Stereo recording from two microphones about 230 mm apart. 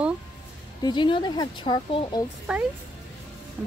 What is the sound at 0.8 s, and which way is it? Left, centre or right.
A woman's voice, centre.